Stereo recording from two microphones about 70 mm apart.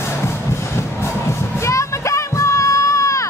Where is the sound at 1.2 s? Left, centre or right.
Left.